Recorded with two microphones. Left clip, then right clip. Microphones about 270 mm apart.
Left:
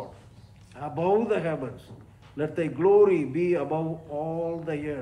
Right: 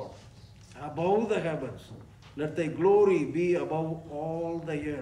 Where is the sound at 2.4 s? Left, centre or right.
Right.